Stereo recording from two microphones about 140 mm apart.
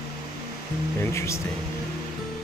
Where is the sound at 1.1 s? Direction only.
20° left (ahead or behind).